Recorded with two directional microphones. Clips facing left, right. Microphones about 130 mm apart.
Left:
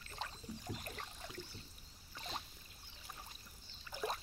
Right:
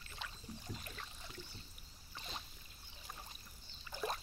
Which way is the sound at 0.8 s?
45° left (ahead or behind).